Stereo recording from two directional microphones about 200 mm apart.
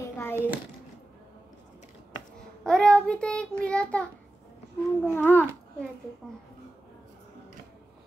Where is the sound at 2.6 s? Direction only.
5° left (ahead or behind).